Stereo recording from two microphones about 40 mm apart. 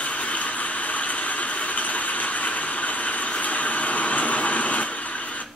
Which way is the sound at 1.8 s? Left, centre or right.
Left.